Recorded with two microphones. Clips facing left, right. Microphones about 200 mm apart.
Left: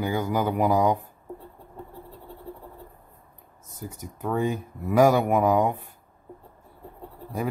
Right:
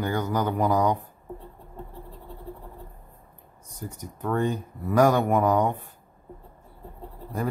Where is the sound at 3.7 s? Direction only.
5° left (ahead or behind).